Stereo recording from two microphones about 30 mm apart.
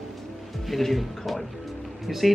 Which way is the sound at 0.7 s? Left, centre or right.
Centre.